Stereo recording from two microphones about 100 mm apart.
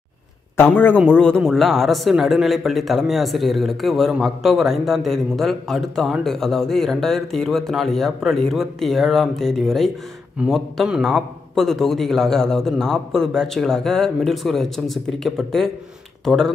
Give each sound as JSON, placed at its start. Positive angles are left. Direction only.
{"t": 0.6, "sound": "a man's voice", "side_deg": 20}